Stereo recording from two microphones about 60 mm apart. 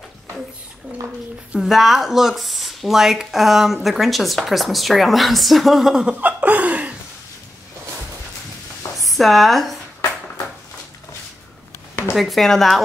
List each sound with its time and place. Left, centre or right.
1.6 s speech: centre
6.0 s laughter: right
8.9 s speech: centre
12.2 s speech: centre